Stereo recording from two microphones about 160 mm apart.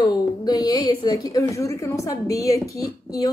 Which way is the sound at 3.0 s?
25° left (ahead or behind).